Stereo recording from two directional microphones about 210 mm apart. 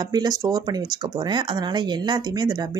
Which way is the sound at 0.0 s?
20° right (ahead or behind).